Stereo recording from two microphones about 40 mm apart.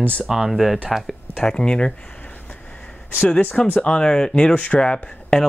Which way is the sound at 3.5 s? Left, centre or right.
Left.